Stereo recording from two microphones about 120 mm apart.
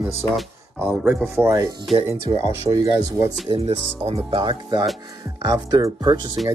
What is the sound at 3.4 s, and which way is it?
Speech, 50° right (ahead or behind).